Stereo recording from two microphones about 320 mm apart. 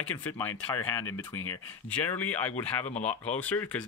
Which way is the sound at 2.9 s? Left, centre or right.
Left.